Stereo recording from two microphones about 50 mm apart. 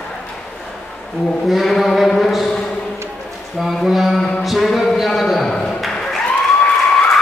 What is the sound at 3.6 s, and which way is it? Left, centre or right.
Speech, centre.